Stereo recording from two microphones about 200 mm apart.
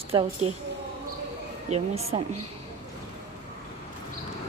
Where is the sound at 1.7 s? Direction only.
30° right (ahead or behind).